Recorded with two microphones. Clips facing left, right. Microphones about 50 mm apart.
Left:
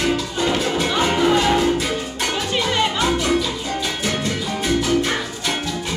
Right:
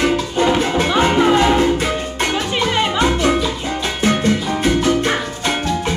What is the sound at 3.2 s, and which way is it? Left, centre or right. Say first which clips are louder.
Salsa music: right 3 dB; right.